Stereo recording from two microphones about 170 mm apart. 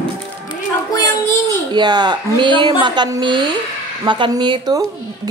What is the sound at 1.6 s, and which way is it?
A woman's voice, 25° right (ahead or behind).